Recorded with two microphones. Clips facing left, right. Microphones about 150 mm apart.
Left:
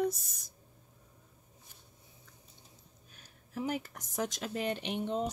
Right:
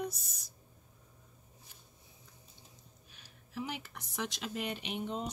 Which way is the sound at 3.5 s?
45° left (ahead or behind).